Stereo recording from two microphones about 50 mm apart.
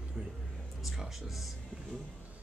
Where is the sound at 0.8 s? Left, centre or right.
Centre.